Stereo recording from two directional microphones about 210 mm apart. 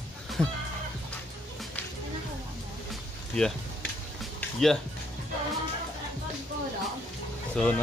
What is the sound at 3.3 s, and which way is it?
Speech, 5° left (ahead or behind).